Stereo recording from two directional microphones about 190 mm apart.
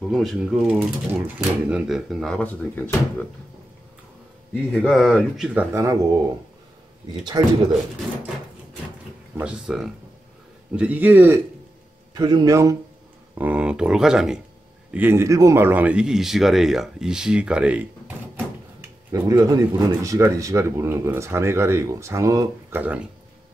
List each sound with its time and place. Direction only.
0.1 s speech: centre (ahead or behind)
4.8 s speech: 5° right (ahead or behind)
7.3 s a man's voice: 20° right (ahead or behind)
9.4 s speech: 5° right (ahead or behind)
12.1 s a man's voice: 20° right (ahead or behind)